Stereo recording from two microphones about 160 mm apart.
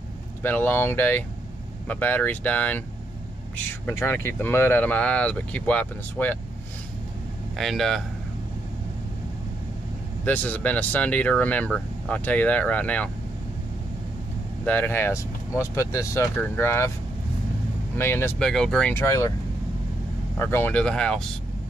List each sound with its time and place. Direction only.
0.4 s speech: 10° left (ahead or behind)
7.5 s speech: centre (ahead or behind)
10.2 s speech: 10° left (ahead or behind)
14.6 s speech: 10° left (ahead or behind)
17.9 s speech: 15° left (ahead or behind)
18.4 s speech: 5° left (ahead or behind)
18.9 s speech: 20° left (ahead or behind)
20.3 s speech: 15° left (ahead or behind)